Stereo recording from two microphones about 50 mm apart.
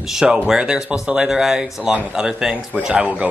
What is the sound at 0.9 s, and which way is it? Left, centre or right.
Speech, centre.